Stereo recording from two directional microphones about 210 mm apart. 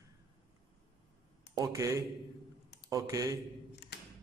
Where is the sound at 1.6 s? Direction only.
15° right (ahead or behind).